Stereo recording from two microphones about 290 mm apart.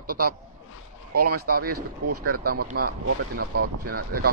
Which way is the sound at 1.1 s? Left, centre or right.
Right.